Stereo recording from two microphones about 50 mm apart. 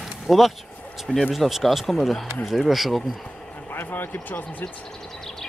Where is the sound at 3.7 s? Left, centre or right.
Left.